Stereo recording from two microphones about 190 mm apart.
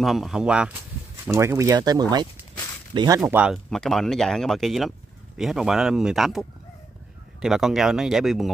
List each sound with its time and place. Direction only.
0.0 s speech: centre (ahead or behind); by 3.2 s 25° right (ahead or behind)
3.2 s speech: 5° right (ahead or behind)
7.4 s speech: centre (ahead or behind)